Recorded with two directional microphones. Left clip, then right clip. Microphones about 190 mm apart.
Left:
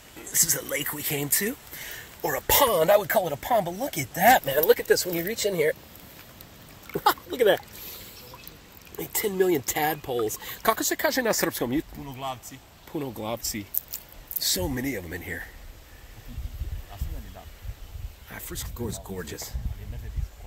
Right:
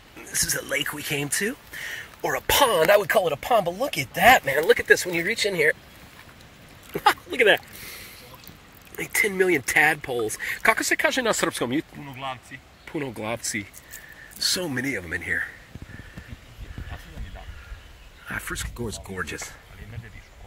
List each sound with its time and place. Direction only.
0.2 s speech: 10° left (ahead or behind)
6.9 s a sound: 10° right (ahead or behind)
9.0 s speech: 10° left (ahead or behind)
12.1 s speech: 35° left (ahead or behind)
12.9 s speech: 5° left (ahead or behind)
18.3 s speech: centre (ahead or behind)